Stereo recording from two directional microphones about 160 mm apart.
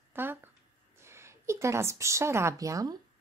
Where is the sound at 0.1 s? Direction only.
15° right (ahead or behind).